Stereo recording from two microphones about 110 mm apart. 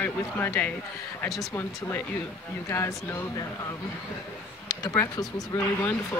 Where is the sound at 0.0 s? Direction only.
20° left (ahead or behind).